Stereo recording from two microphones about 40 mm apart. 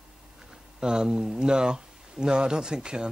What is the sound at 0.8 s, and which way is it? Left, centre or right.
Speech, right.